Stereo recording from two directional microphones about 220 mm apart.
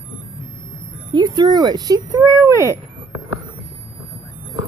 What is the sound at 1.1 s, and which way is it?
Speech, 20° right (ahead or behind).